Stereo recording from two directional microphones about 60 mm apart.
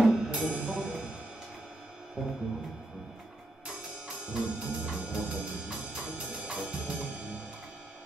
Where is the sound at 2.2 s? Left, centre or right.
Centre.